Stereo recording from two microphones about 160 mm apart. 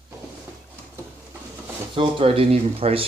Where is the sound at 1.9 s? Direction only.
35° right (ahead or behind).